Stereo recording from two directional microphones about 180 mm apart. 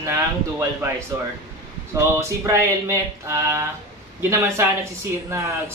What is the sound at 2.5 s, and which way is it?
Speech, 15° right (ahead or behind).